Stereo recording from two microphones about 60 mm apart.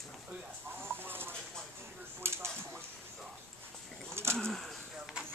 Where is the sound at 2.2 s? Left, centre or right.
Right.